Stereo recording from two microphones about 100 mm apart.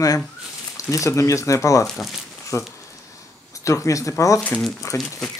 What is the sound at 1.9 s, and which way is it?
Speech, centre (ahead or behind).